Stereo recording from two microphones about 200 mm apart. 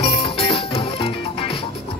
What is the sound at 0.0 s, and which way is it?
Music, 30° left (ahead or behind).